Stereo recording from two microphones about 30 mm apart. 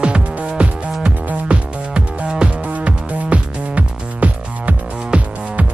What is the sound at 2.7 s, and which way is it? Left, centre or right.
Music, right.